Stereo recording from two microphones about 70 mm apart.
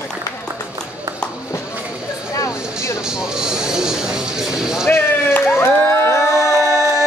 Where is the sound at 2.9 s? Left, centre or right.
Centre.